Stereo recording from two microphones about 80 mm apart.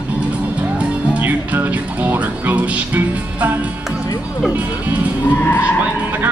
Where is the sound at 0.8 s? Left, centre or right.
Centre.